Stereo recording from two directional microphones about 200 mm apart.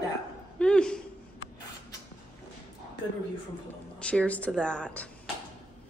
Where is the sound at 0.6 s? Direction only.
5° left (ahead or behind).